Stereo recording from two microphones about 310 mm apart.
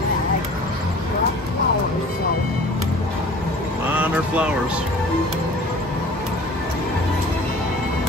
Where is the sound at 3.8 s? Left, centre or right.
Centre.